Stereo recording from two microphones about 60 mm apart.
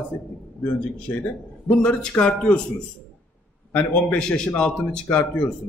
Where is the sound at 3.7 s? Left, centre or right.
Left.